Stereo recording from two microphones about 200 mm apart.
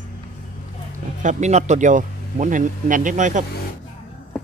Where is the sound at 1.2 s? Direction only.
35° right (ahead or behind).